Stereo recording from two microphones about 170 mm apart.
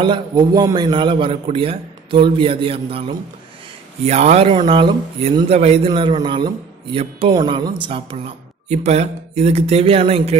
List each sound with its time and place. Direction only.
0.0 s a man's voice: 25° right (ahead or behind)